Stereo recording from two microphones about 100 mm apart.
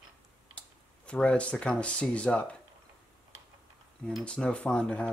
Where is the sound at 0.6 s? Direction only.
10° left (ahead or behind).